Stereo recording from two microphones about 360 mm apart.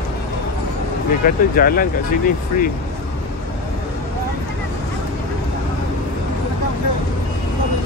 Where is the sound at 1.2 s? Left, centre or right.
Left.